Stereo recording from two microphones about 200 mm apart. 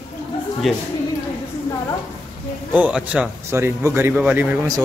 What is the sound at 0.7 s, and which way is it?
Speech, centre (ahead or behind).